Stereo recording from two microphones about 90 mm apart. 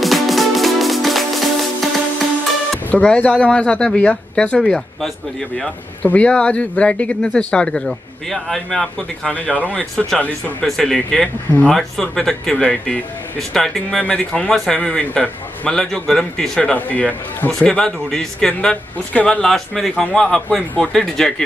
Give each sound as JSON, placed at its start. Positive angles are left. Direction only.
{"t": 0.0, "sound": "music", "side_deg": 0}
{"t": 2.9, "sound": "speech", "side_deg": 15}
{"t": 6.0, "sound": "speech", "side_deg": 15}
{"t": 9.3, "sound": "speech", "side_deg": 15}